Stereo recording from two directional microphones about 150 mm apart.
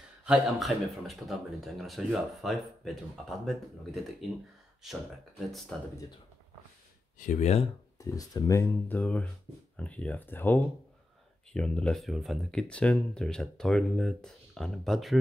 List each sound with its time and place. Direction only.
0.2 s speech: 5° right (ahead or behind)
5.7 s speech: 5° left (ahead or behind)
7.2 s speech: 55° left (ahead or behind)
8.0 s speech: 25° left (ahead or behind); by 15.1 s centre (ahead or behind)